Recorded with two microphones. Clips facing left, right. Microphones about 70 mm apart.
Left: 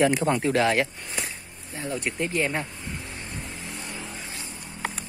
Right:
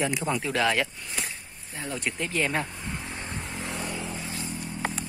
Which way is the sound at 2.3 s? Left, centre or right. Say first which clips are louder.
Left 1 dB; centre.